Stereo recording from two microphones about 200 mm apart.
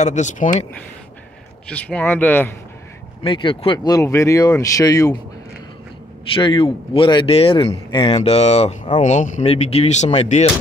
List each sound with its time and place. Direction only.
0.0 s speech: 35° left (ahead or behind)
1.7 s speech: 5° left (ahead or behind)
3.3 s speech: 25° left (ahead or behind)
6.3 s speech: 25° left (ahead or behind)